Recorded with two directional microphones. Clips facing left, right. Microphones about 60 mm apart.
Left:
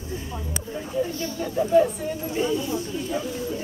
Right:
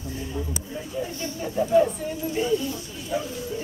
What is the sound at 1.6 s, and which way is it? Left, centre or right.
Speech, centre.